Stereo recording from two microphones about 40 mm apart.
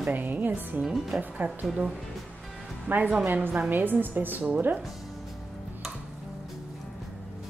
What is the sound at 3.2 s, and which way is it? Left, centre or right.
A woman's voice, right.